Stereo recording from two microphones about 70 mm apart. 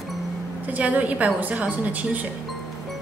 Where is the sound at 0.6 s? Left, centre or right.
Right.